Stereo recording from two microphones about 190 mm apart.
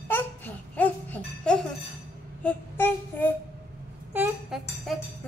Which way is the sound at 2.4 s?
10° left (ahead or behind).